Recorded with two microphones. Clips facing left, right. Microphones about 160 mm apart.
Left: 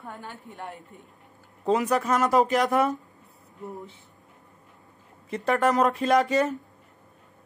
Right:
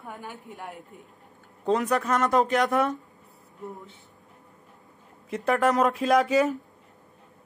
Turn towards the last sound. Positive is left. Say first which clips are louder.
# right 1 dB
turn(degrees=0)  # may be behind; listen again after turning